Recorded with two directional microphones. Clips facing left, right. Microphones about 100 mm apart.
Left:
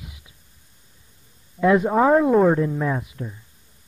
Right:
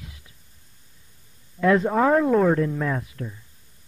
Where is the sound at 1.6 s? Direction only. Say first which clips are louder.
Left 2 dB; 15° left (ahead or behind).